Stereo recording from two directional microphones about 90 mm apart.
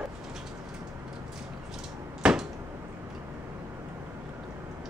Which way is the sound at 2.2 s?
5° right (ahead or behind).